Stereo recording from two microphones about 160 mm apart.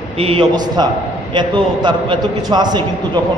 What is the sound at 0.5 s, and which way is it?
A man's voice, 25° right (ahead or behind).